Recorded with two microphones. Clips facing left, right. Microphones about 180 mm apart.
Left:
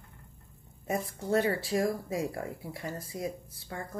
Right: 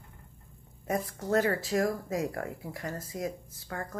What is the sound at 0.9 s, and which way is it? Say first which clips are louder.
Speech: right 1 dB; 25° left (ahead or behind).